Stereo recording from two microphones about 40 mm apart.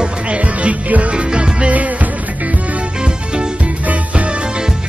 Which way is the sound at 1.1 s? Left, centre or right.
Right.